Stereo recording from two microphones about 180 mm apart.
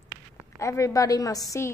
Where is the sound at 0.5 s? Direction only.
15° left (ahead or behind).